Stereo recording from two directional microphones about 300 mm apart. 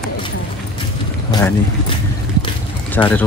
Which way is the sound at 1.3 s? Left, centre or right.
Centre.